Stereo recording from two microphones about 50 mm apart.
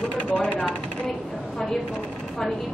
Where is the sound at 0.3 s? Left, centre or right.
Left.